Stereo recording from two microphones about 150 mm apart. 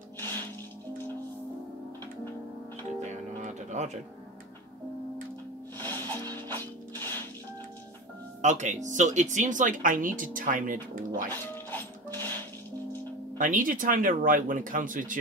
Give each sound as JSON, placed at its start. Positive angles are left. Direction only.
{"t": 3.0, "sound": "music", "side_deg": -50}
{"t": 5.8, "sound": "music", "side_deg": 15}
{"t": 6.3, "sound": "a sound", "side_deg": 15}
{"t": 8.4, "sound": "speech", "side_deg": -50}
{"t": 11.2, "sound": "music", "side_deg": 15}
{"t": 13.4, "sound": "speech", "side_deg": -60}